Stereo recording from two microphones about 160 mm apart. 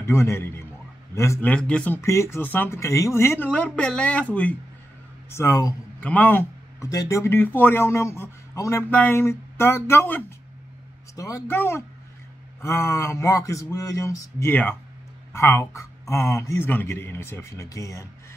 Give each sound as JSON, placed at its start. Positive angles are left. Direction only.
{"t": 0.0, "sound": "speech", "side_deg": 15}